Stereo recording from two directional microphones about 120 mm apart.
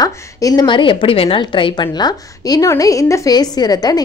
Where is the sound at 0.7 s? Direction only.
45° left (ahead or behind).